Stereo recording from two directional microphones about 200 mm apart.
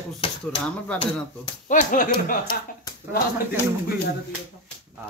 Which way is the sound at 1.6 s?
40° left (ahead or behind).